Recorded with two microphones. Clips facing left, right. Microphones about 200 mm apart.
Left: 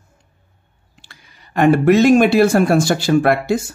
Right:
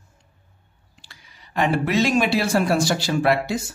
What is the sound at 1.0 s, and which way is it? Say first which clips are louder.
Speech: left 3 dB; 55° left (ahead or behind).